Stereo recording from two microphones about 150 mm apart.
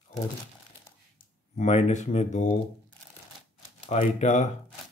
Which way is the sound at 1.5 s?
50° left (ahead or behind).